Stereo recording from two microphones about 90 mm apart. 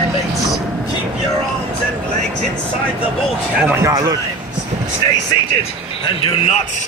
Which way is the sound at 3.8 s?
35° right (ahead or behind).